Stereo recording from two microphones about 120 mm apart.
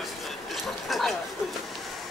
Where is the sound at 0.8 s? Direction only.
Centre (ahead or behind).